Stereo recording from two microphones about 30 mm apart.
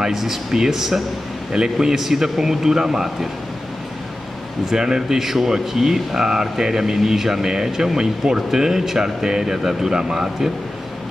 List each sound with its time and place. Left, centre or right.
0.1 s speech: centre
1.5 s a man's voice: right
2.0 s speech: centre
4.7 s a man's voice: right
5.2 s speech: centre